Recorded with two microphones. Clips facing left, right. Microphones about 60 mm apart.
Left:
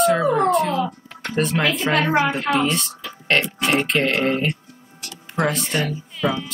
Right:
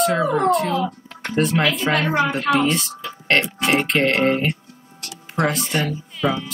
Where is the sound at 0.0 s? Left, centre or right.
Centre.